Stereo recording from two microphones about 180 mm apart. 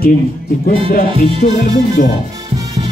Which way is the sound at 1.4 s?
40° left (ahead or behind).